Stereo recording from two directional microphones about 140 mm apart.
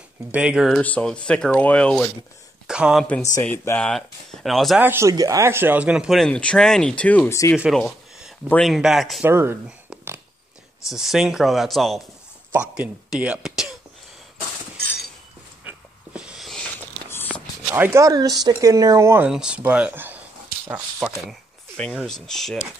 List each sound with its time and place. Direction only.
0.3 s speech: 10° right (ahead or behind)
0.7 s speech: 10° left (ahead or behind)
2.6 s speech: 5° right (ahead or behind)
3.4 s speech: 15° left (ahead or behind)
4.7 s speech: 15° right (ahead or behind); by 7.3 s 10° left (ahead or behind)
7.5 s speech: 5° right (ahead or behind)
9.2 s speech: 15° right (ahead or behind)
9.7 s a sound: 5° right (ahead or behind)
10.9 s speech: centre (ahead or behind)
15.6 s a sound: 10° right (ahead or behind)
17.3 s speech: 15° right (ahead or behind)
19.2 s speech: 5° right (ahead or behind)
21.2 s speech: 5° left (ahead or behind)